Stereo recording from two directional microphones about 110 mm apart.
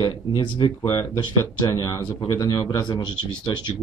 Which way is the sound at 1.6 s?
35° left (ahead or behind).